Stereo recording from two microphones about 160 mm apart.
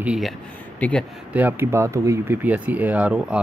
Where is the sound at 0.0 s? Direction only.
5° right (ahead or behind).